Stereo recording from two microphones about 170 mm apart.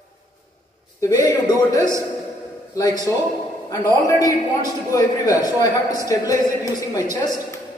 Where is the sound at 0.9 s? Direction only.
20° left (ahead or behind).